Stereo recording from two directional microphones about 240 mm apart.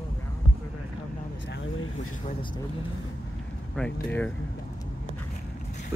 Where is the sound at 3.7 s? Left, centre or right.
Centre.